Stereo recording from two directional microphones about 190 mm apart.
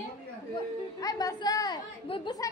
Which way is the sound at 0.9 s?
20° left (ahead or behind).